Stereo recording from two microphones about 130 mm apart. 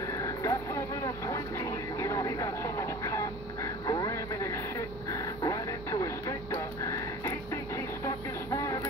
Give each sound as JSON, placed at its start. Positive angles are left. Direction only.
{"t": 0.2, "sound": "vehicle", "side_deg": 25}
{"t": 4.1, "sound": "radio", "side_deg": 20}